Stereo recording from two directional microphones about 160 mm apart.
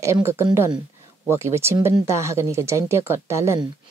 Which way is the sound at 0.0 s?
15° right (ahead or behind).